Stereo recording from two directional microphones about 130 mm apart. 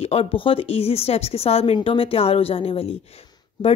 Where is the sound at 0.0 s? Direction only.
50° left (ahead or behind).